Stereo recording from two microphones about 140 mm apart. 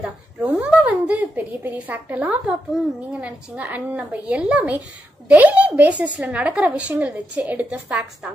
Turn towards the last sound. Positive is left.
turn(degrees=-10)  # may be behind; listen again after turning